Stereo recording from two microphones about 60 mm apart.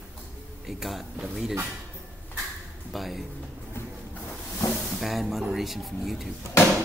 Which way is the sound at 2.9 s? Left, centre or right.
Centre.